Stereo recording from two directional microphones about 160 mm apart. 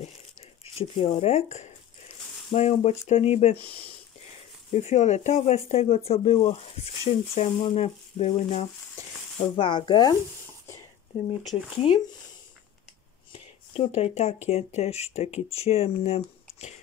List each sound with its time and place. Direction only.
0.7 s speech: 40° left (ahead or behind)
4.7 s speech: 45° left (ahead or behind)
9.6 s speech: 30° left (ahead or behind)
11.8 s speech: 35° left (ahead or behind)
13.3 s speech: 40° left (ahead or behind)